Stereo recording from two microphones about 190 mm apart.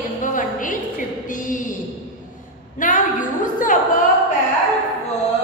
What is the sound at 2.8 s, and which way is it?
Speech, 45° left (ahead or behind).